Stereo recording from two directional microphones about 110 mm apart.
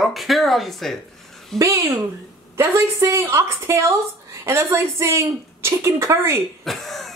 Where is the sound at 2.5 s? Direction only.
25° right (ahead or behind).